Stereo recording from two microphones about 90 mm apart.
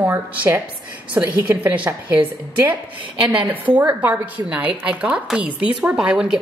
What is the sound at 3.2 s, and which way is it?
A woman's voice, 20° right (ahead or behind).